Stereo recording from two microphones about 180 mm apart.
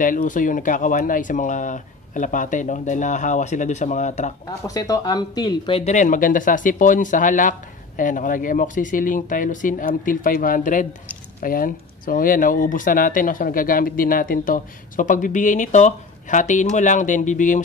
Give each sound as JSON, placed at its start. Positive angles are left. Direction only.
{"t": 0.0, "sound": "speech", "side_deg": 45}
{"t": 4.6, "sound": "speech", "side_deg": 20}